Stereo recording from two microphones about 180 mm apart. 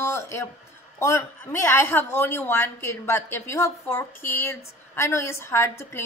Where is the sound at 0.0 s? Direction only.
15° left (ahead or behind).